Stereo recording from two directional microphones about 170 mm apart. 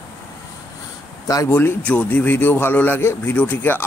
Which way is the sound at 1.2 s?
20° left (ahead or behind).